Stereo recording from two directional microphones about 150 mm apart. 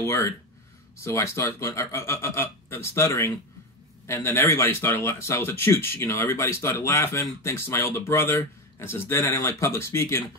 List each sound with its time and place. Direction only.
0.0 s speech: 20° left (ahead or behind)